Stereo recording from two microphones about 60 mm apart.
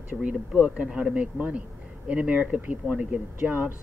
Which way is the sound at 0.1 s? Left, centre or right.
Right.